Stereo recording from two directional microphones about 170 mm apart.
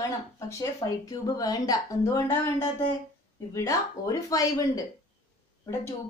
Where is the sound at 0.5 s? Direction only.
20° left (ahead or behind).